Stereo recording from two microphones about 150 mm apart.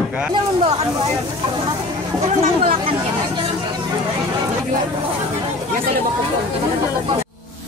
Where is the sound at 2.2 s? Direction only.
45° right (ahead or behind).